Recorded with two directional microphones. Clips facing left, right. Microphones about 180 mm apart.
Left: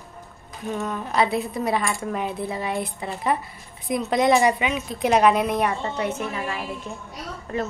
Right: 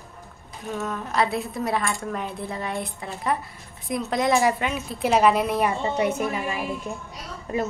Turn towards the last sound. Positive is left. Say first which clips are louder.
# right 1 dB
turn(degrees=-10)  # may be behind; listen again after turning